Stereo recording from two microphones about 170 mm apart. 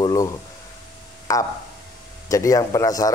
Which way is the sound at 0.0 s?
20° left (ahead or behind).